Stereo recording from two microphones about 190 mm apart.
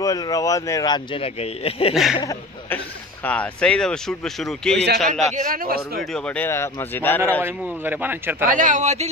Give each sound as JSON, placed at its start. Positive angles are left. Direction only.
{"t": 0.0, "sound": "speech", "side_deg": 20}
{"t": 3.3, "sound": "speech", "side_deg": 5}
{"t": 5.2, "sound": "a man's voice", "side_deg": -40}
{"t": 6.1, "sound": "speech", "side_deg": 5}
{"t": 7.4, "sound": "a man's voice", "side_deg": -10}
{"t": 8.5, "sound": "a man's voice", "side_deg": -45}